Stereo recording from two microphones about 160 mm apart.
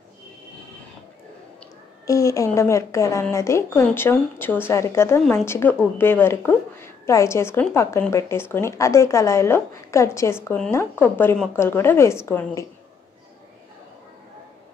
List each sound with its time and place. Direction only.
2.0 s a woman's voice: 20° left (ahead or behind)